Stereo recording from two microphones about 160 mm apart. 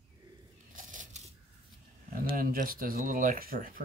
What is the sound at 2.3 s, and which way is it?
Speech, 60° right (ahead or behind).